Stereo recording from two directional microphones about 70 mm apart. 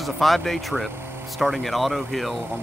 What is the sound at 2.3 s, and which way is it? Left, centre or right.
Speech, right.